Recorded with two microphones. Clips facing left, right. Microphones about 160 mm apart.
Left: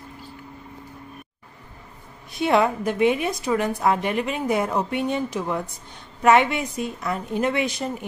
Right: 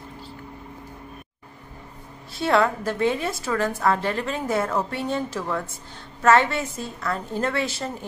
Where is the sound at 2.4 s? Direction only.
20° left (ahead or behind).